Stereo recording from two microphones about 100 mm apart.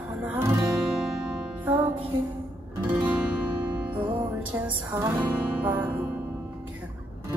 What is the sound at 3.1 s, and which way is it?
Music, 10° right (ahead or behind).